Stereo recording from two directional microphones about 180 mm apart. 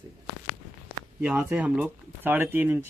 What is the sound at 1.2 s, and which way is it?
A man's voice, 5° right (ahead or behind).